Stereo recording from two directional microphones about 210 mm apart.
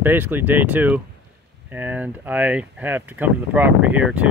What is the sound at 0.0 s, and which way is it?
Speech, 10° right (ahead or behind).